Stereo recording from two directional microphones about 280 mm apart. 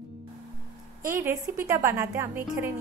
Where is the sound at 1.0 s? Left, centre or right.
Centre.